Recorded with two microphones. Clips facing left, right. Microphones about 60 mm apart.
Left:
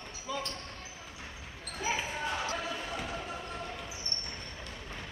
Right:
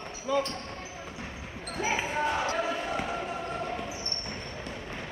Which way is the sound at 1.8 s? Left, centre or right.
Right.